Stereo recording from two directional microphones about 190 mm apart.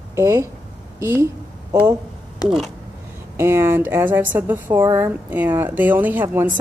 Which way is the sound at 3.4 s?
15° right (ahead or behind).